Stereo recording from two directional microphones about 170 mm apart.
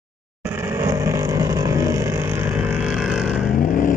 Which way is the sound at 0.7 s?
20° right (ahead or behind).